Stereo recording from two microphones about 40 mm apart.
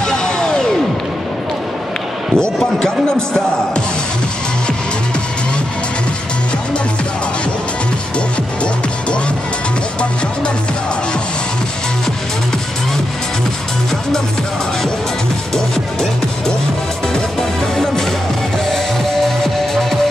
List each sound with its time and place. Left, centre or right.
0.0 s music: centre
2.3 s speech: centre
15.5 s music: centre
19.2 s music: centre